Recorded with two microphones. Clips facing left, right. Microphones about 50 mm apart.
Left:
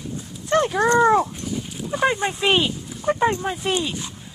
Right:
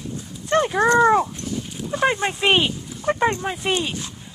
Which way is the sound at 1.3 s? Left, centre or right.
Centre.